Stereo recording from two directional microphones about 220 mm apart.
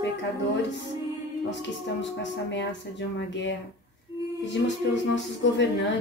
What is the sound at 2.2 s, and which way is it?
Speech, 55° left (ahead or behind).